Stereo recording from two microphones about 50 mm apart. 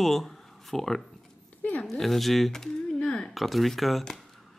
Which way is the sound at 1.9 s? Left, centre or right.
Centre.